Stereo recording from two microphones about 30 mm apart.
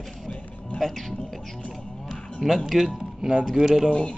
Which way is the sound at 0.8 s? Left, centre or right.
Centre.